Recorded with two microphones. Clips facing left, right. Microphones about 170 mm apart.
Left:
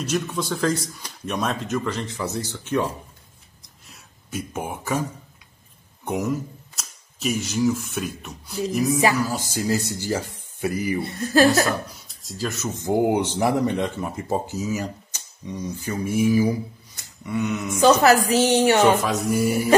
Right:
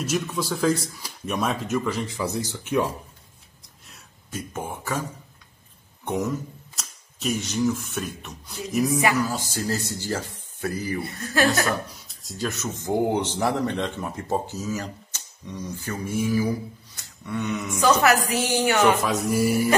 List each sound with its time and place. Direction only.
0.0 s speech: 5° right (ahead or behind)
3.8 s a sound: centre (ahead or behind)
4.6 s speech: 15° left (ahead or behind)
6.0 s a man's voice: 5° left (ahead or behind)
9.2 s speech: 10° left (ahead or behind)
11.3 s speech: 30° left (ahead or behind)
12.3 s speech: centre (ahead or behind)
12.8 s speech: 10° left (ahead or behind)
17.8 s a woman's voice: 30° left (ahead or behind)
18.9 s speech: centre (ahead or behind)